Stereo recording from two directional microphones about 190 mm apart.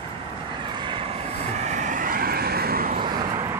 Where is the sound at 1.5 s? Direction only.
40° right (ahead or behind).